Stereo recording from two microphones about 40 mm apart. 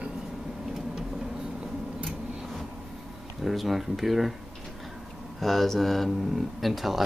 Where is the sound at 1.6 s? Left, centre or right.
Right.